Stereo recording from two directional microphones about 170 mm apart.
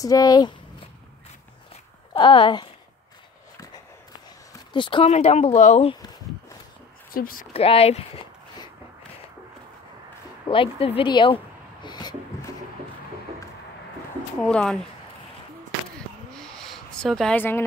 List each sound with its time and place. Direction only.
0.0 s speech: 20° left (ahead or behind)
2.1 s speech: 30° left (ahead or behind)
4.7 s speech: 30° left (ahead or behind)
7.1 s speech: 55° left (ahead or behind)
7.5 s speech: 35° left (ahead or behind)
10.5 s speech: 35° left (ahead or behind)
14.4 s speech: 5° left (ahead or behind)
16.3 s snort: 5° left (ahead or behind)